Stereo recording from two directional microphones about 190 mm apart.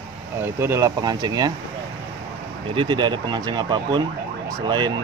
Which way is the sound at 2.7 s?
25° right (ahead or behind).